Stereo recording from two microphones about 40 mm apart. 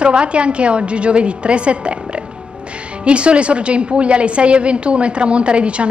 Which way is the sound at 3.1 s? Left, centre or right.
Right.